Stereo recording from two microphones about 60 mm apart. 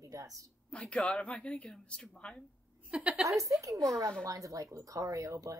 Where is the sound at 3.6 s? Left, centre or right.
Right.